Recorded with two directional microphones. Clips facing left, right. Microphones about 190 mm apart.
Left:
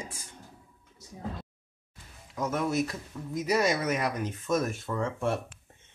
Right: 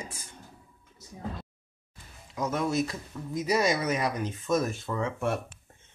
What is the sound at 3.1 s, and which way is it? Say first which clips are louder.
Speech: right 1 dB; 10° left (ahead or behind).